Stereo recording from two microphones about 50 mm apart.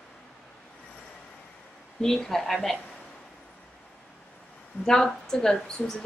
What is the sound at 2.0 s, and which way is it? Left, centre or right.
Speech, centre.